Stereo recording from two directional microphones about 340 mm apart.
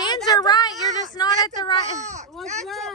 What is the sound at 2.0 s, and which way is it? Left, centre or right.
Speech, right.